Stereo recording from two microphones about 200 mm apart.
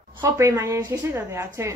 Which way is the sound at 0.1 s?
15° right (ahead or behind).